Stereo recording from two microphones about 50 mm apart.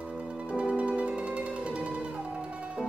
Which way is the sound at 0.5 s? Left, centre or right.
Right.